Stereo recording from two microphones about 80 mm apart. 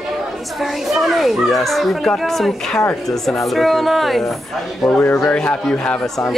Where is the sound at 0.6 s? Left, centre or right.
Centre.